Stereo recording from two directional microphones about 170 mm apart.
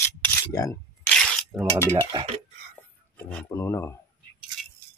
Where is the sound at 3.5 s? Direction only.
15° left (ahead or behind).